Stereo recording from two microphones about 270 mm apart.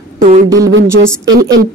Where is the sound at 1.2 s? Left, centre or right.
Right.